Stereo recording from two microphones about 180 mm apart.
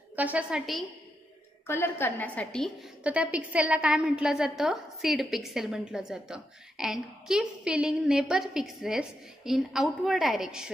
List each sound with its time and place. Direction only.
0.1 s a woman's voice: 10° right (ahead or behind)
1.7 s a woman's voice: 15° left (ahead or behind); by 10.7 s 5° right (ahead or behind)